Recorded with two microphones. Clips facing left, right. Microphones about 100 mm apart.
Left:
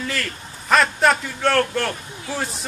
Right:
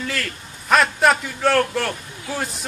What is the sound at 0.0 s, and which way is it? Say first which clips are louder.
A man's voice: even; centre (ahead or behind).